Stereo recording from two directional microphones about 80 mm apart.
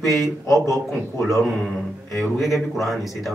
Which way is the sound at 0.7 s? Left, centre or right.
Centre.